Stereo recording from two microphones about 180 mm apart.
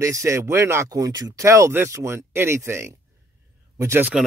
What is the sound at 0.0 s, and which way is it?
Speech, 15° right (ahead or behind).